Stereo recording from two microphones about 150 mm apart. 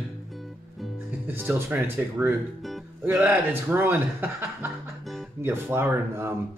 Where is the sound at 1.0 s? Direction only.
10° right (ahead or behind).